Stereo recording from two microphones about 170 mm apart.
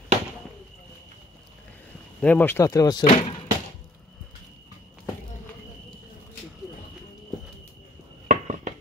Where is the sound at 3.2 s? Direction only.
35° left (ahead or behind).